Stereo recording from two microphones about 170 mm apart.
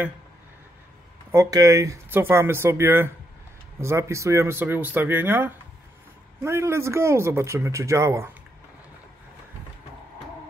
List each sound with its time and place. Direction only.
1.3 s speech: 20° right (ahead or behind)